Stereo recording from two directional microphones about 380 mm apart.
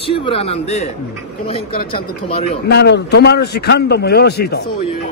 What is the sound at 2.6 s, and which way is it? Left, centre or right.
A man's voice, left.